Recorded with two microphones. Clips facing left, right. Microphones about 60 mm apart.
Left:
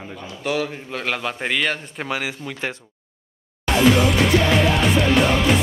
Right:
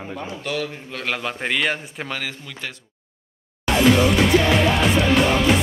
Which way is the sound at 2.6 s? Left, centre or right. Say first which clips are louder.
Left 6 dB; left.